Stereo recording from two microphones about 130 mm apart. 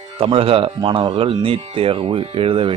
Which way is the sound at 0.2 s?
45° right (ahead or behind).